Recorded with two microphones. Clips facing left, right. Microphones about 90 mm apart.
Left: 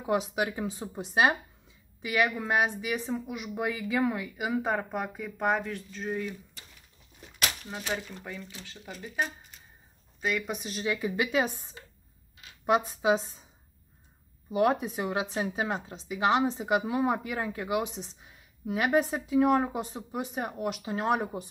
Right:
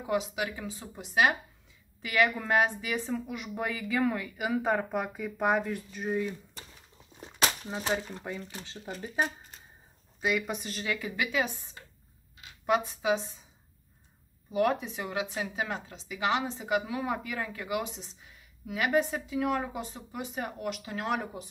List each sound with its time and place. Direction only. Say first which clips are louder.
0.1 s a woman's voice: left 3 dB; 35° left (ahead or behind)
2.0 s a woman's voice: right 1 dB; 15° left (ahead or behind); by 6.2 s 10° right (ahead or behind)
7.2 s a sound: right 4 dB; 30° right (ahead or behind)
7.8 s speech: right 3 dB; 35° right (ahead or behind)
8.2 s speech: right 3 dB; 15° right (ahead or behind); by 9.3 s 35° right (ahead or behind)
10.2 s a woman's voice: right 1 dB; centre (ahead or behind)
10.8 s speech: left 5 dB; 25° left (ahead or behind)
12.6 s speech: left 2 dB; 30° left (ahead or behind)
14.5 s a woman's voice: left 2 dB; 25° left (ahead or behind)